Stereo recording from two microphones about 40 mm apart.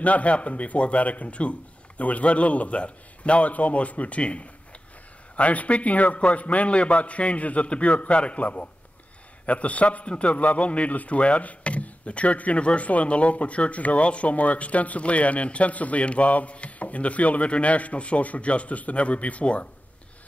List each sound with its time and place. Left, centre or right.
0.0 s a man's voice: left